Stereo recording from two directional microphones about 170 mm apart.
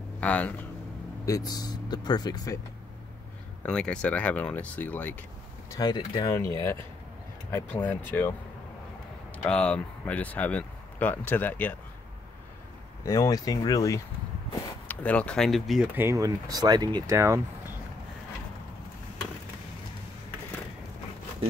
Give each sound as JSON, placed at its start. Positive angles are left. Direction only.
{"t": 0.2, "sound": "speech", "side_deg": 10}
{"t": 1.2, "sound": "speech", "side_deg": 20}
{"t": 3.6, "sound": "speech", "side_deg": 5}
{"t": 5.7, "sound": "speech", "side_deg": 25}
{"t": 9.4, "sound": "speech", "side_deg": 5}
{"t": 13.0, "sound": "speech", "side_deg": 20}
{"t": 14.9, "sound": "speech", "side_deg": 5}
{"t": 16.0, "sound": "speech", "side_deg": -20}